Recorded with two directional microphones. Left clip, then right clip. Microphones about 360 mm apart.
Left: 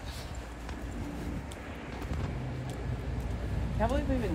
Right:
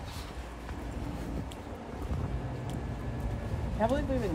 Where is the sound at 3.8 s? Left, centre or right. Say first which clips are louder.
Right 2 dB; right.